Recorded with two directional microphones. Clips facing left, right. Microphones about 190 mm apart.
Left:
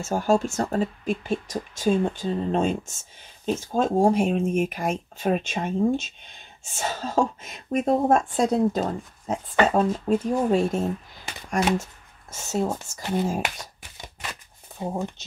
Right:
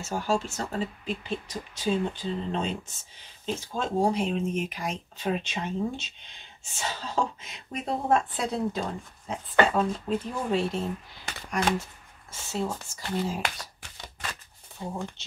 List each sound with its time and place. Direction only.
0.0 s a woman's voice: 45° left (ahead or behind)
13.6 s a sound: 20° left (ahead or behind)
14.8 s speech: 45° left (ahead or behind)